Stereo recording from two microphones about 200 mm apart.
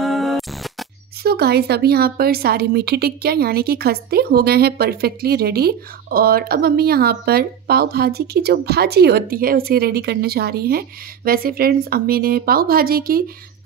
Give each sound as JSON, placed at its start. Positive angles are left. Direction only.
{"t": 0.0, "sound": "music", "side_deg": 0}
{"t": 1.2, "sound": "speech", "side_deg": -55}